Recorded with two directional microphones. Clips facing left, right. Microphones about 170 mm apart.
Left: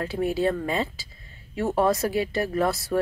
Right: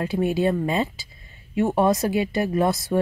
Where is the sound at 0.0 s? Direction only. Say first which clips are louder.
Right 3 dB; 20° right (ahead or behind).